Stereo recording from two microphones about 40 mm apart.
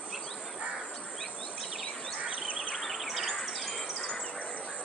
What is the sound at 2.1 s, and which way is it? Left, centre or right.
Insect, right.